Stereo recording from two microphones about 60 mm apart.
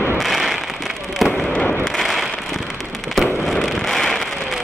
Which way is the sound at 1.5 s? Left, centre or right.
Centre.